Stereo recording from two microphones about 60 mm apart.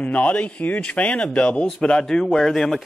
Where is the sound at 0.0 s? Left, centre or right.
Left.